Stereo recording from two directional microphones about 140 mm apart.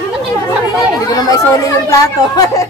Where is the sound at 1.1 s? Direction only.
25° left (ahead or behind).